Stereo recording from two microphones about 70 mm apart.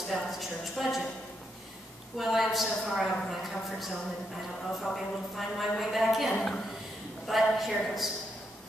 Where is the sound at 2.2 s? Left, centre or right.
Centre.